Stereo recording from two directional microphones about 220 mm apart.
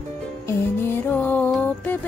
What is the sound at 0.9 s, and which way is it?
Music, 10° left (ahead or behind).